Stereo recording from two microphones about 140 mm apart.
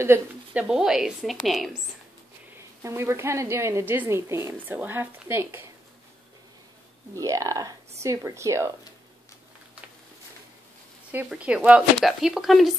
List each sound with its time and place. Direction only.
0.0 s a woman's voice: 15° right (ahead or behind)
2.8 s a woman's voice: 20° right (ahead or behind)
7.2 s speech: 25° right (ahead or behind)
11.2 s a woman's voice: 10° right (ahead or behind)